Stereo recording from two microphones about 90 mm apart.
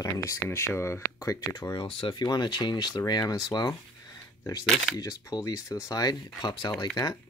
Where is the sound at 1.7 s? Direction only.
80° left.